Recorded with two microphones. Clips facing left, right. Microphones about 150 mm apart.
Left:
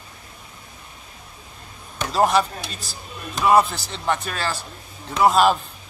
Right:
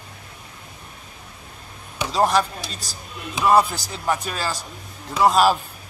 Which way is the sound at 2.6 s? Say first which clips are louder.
Even; 40° right (ahead or behind).